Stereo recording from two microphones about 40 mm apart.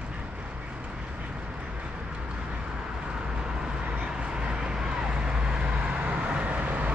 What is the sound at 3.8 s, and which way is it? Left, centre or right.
Vehicle, right.